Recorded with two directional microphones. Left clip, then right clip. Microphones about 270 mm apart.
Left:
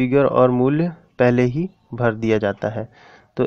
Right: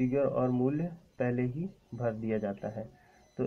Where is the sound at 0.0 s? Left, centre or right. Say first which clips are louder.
Left 14 dB; left.